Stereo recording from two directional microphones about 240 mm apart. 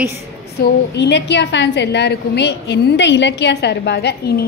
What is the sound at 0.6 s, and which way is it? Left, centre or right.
A woman's voice, left.